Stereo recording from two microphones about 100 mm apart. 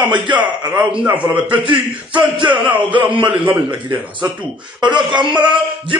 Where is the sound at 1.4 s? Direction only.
55° right (ahead or behind).